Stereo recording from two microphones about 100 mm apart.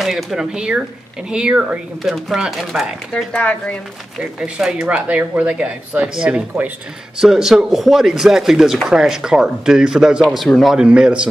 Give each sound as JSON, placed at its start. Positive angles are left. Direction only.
{"t": 0.0, "sound": "speech", "side_deg": 0}
{"t": 3.3, "sound": "speech", "side_deg": 10}
{"t": 4.2, "sound": "speech", "side_deg": -5}